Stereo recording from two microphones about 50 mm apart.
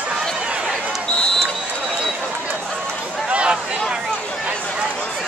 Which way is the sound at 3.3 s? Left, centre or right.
Right.